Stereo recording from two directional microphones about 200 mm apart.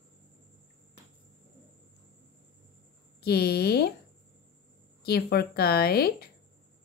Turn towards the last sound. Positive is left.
turn(degrees=50)  # may be behind; listen again after turning